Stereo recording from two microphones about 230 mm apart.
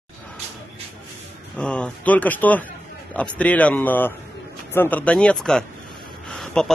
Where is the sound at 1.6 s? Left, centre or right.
Centre.